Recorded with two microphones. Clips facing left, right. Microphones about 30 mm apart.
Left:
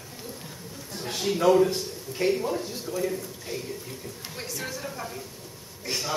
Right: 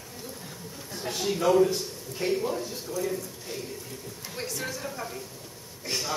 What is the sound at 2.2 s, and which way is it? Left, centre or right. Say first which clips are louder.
Speech: left 3 dB; left.